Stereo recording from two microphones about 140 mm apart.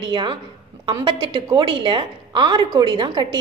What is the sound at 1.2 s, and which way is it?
A woman's voice, 40° right (ahead or behind).